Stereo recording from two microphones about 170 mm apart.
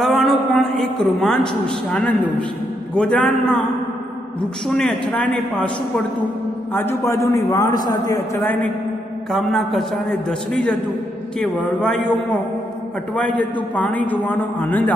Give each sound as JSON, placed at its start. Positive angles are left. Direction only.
{"t": 0.0, "sound": "a man's voice", "side_deg": 0}
{"t": 4.6, "sound": "a man's voice", "side_deg": 5}
{"t": 6.7, "sound": "a man's voice", "side_deg": 10}
{"t": 9.3, "sound": "a man's voice", "side_deg": 0}
{"t": 13.4, "sound": "a man's voice", "side_deg": 10}